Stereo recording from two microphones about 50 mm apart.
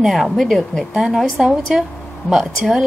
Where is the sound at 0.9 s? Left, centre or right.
Centre.